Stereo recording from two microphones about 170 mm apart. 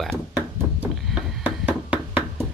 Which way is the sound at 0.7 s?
5° right (ahead or behind).